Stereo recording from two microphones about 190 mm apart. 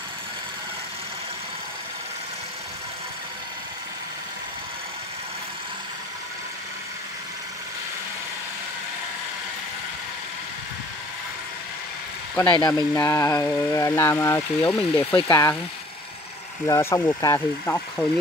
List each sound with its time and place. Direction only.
12.5 s speech: 20° left (ahead or behind)
16.6 s speech: 15° left (ahead or behind)